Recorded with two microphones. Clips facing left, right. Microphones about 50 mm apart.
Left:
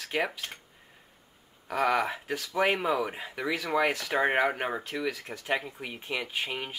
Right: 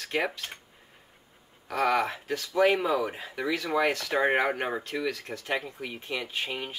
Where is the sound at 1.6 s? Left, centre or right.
Centre.